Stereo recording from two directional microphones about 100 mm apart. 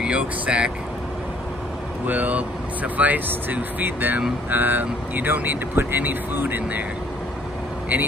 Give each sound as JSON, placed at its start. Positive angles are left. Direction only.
{"t": 0.0, "sound": "speech", "side_deg": -10}
{"t": 2.0, "sound": "speech", "side_deg": -15}